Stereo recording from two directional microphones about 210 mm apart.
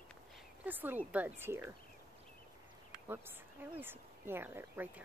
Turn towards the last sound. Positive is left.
turn(degrees=-10)  # may be behind; listen again after turning